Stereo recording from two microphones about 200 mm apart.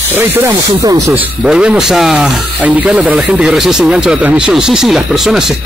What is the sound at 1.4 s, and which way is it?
Speech, 5° right (ahead or behind).